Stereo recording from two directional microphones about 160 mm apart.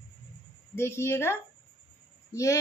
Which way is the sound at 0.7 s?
15° left (ahead or behind).